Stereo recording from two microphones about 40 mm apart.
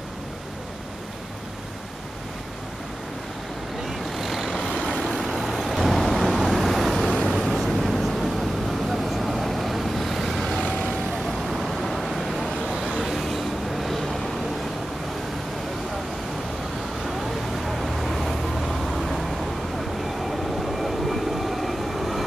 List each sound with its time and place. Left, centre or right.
4.1 s vehicle: centre
10.7 s vehicle: left
11.1 s vehicle: centre
17.6 s vehicle: centre
20.2 s vehicle: centre